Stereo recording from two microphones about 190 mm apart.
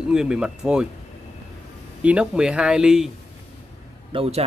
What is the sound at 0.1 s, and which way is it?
Speech, 5° right (ahead or behind).